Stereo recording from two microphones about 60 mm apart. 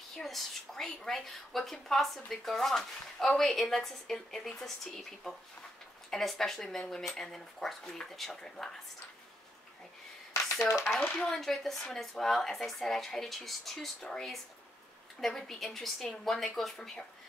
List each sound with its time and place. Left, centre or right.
0.2 s a woman's voice: centre
10.7 s speech: left
11.1 s a woman's voice: centre
15.1 s a woman's voice: centre